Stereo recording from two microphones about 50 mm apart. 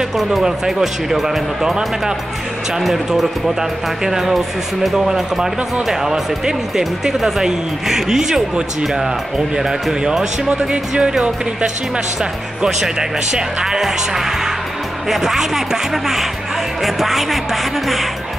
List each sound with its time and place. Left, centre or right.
0.2 s speech: centre
10.5 s speech: centre